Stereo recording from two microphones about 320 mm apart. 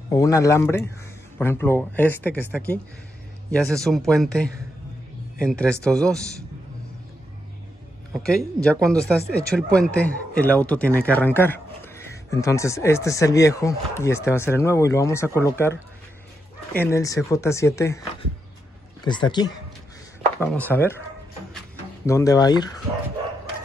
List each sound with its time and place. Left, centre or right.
0.1 s speech: centre
8.1 s speech: centre
16.9 s speech: centre
19.0 s speech: centre
22.0 s speech: centre